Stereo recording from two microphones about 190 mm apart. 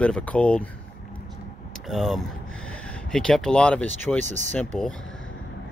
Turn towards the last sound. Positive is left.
turn(degrees=5)  # may be behind; listen again after turning